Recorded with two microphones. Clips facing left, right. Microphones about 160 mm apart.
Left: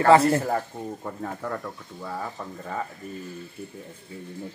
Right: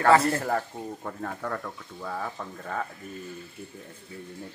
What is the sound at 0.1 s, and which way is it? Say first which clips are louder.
Speech: left 4 dB; 25° left (ahead or behind).